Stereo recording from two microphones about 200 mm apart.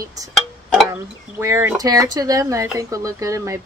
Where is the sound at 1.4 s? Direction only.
15° right (ahead or behind).